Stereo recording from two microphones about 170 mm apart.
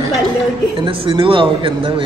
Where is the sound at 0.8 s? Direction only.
30° right (ahead or behind).